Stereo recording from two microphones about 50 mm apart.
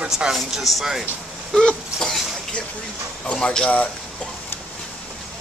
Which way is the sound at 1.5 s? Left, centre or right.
Centre.